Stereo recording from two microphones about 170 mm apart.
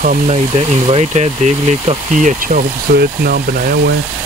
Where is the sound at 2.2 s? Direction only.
50° right (ahead or behind).